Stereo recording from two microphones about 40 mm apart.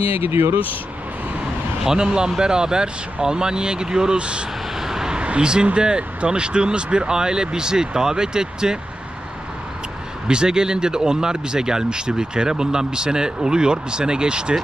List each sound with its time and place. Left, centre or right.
0.2 s speech: right
1.9 s speech: right
4.7 s vehicle: centre
5.1 s speech: right
10.2 s speech: right